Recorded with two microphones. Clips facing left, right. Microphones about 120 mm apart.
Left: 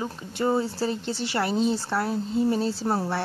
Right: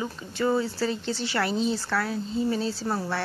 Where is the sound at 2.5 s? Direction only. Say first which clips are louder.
Left 2 dB; 50° left (ahead or behind).